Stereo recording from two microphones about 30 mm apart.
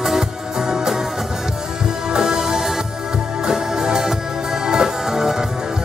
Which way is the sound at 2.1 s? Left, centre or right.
Right.